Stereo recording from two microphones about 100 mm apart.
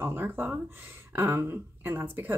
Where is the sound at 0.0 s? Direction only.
20° right (ahead or behind).